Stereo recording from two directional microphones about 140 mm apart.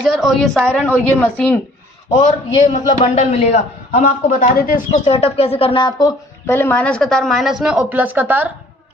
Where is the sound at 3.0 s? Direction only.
50° left (ahead or behind).